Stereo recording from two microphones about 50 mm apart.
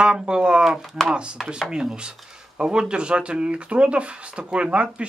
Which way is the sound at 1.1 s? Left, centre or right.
Centre.